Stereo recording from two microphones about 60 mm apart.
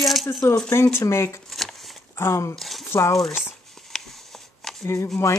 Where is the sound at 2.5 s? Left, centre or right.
Centre.